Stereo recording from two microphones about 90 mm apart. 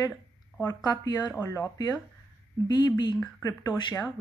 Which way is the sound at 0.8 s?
45° left (ahead or behind).